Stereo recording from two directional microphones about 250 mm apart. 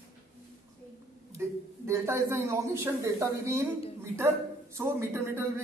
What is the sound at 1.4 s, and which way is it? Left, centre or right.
A man's voice, centre.